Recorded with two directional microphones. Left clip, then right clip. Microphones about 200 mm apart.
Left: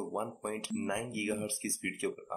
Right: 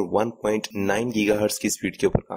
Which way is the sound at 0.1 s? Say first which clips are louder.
Right 14 dB; 45° right (ahead or behind).